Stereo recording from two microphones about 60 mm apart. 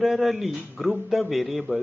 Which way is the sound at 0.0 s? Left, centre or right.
Centre.